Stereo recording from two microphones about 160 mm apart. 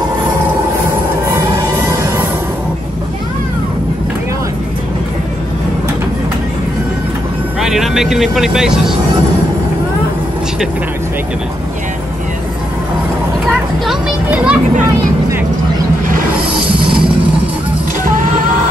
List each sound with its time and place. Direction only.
1.2 s music: 15° right (ahead or behind)
7.6 s speech: 5° right (ahead or behind)
14.3 s a child's voice: 5° right (ahead or behind)
16.8 s music: 30° right (ahead or behind)
18.1 s a sound: 55° right (ahead or behind)